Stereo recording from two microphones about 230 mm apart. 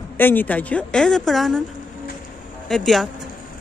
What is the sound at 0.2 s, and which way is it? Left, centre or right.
Speech, centre.